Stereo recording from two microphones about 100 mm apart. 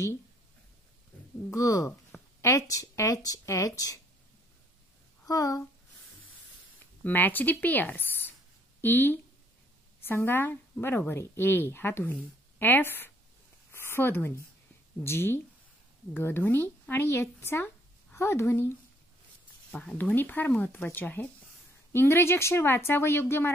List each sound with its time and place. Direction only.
1.5 s speech: 30° left (ahead or behind)
5.2 s speech: 35° left (ahead or behind)
7.0 s a woman's voice: 20° left (ahead or behind)
13.7 s a sound: 20° left (ahead or behind)
15.0 s a woman's voice: 25° left (ahead or behind)
19.7 s a woman's voice: 15° left (ahead or behind)